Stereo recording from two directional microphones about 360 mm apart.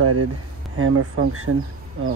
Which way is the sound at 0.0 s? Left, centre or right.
Right.